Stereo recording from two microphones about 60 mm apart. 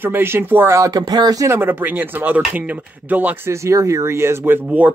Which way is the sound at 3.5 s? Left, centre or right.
Right.